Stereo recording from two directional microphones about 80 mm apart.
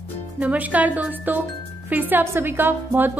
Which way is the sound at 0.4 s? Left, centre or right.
Centre.